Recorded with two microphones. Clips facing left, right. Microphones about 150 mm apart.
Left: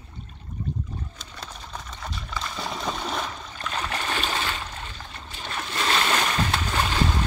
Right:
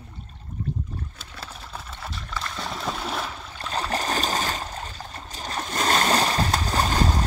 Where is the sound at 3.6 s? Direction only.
35° right (ahead or behind).